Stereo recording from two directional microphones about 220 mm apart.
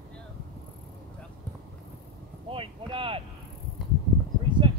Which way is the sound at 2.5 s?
25° right (ahead or behind).